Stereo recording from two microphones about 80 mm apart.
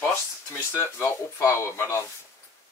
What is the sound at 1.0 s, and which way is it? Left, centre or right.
Speech, left.